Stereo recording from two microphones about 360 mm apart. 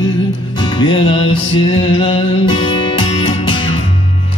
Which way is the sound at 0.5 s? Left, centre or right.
Centre.